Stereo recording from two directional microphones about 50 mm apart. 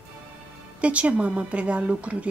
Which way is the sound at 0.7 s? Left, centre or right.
Right.